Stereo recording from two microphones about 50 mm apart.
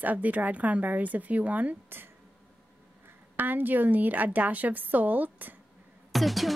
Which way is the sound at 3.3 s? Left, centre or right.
Right.